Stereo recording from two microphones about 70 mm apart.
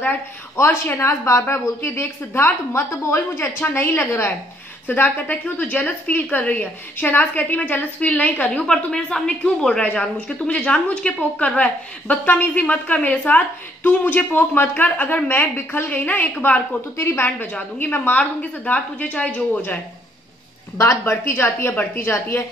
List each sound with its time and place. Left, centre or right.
0.7 s a woman's voice: left
8.6 s speech: centre
16.9 s a woman's voice: left
17.4 s speech: left
20.8 s a woman's voice: left